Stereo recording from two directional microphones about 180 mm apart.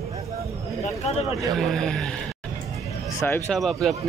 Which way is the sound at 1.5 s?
Centre (ahead or behind).